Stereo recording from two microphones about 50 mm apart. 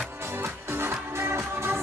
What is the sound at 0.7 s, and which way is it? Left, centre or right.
Music, right.